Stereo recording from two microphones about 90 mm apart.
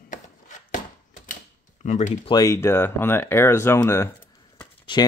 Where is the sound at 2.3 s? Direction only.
35° left (ahead or behind).